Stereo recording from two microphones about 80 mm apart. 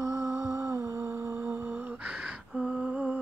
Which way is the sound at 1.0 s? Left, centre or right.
Right.